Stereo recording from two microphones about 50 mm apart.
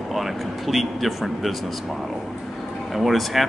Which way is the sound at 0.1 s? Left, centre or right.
Centre.